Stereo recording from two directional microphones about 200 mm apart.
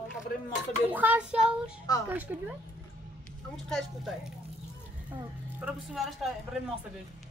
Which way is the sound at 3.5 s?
Centre (ahead or behind).